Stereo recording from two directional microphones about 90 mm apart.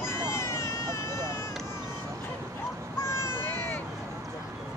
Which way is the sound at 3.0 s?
30° left (ahead or behind).